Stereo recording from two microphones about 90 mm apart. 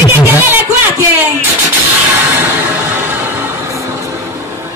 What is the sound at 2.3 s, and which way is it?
Music, 25° right (ahead or behind).